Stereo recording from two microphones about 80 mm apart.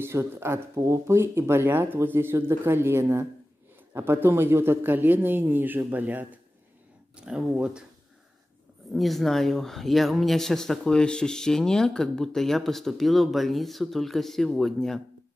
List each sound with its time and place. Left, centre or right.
0.0 s speech: right
7.2 s speech: centre
8.9 s speech: centre